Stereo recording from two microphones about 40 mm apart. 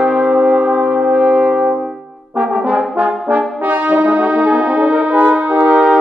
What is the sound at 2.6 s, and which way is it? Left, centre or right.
Brass instrument, right.